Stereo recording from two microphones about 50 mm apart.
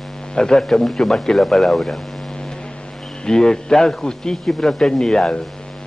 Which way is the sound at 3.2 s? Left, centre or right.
Centre.